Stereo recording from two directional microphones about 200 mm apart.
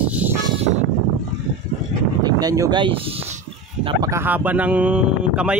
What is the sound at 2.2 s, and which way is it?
Speech, 20° right (ahead or behind).